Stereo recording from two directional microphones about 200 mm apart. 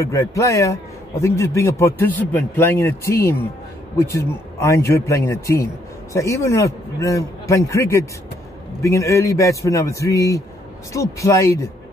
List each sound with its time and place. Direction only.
0.0 s a man's voice: 15° left (ahead or behind)